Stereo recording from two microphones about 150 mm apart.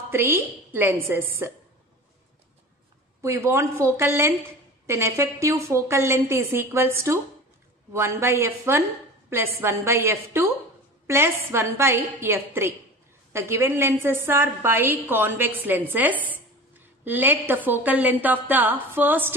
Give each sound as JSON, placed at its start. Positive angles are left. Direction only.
{"t": 0.1, "sound": "a woman's voice", "side_deg": -15}
{"t": 3.2, "sound": "a woman's voice", "side_deg": -20}